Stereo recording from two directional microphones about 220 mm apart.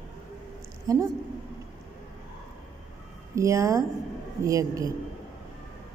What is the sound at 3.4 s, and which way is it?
A woman's voice, 15° right (ahead or behind).